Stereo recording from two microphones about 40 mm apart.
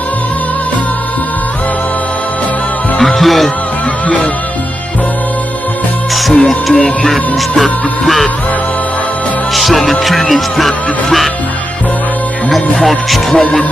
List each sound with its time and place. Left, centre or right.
3.2 s speech: centre
6.3 s music: left
7.1 s music: centre
9.5 s music: centre
12.4 s music: centre
13.4 s music: left